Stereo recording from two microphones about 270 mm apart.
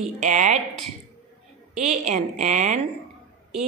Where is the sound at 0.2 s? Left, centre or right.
Right.